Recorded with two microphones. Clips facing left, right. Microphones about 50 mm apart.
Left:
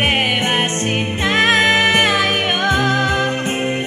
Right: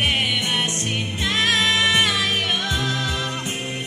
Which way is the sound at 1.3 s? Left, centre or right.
Left.